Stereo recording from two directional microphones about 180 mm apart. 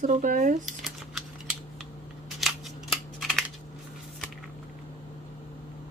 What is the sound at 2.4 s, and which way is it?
Scissors, centre (ahead or behind).